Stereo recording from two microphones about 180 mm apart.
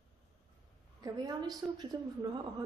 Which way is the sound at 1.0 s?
20° right (ahead or behind).